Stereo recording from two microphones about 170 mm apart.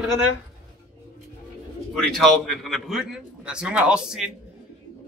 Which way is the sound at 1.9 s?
Centre (ahead or behind).